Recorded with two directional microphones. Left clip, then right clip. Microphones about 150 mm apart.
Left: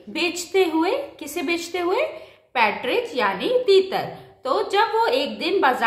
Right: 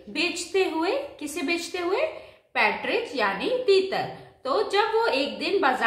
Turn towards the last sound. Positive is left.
turn(degrees=30)  # may be behind; listen again after turning